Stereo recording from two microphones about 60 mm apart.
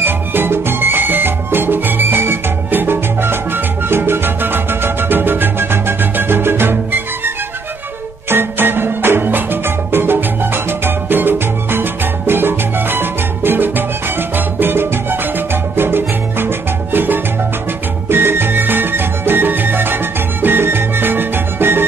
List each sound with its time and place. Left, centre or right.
0.0 s music: right
11.1 s salsa music: right
14.3 s music: right